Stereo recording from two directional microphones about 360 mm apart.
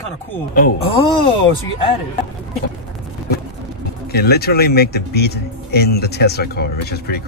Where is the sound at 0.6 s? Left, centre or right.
Left.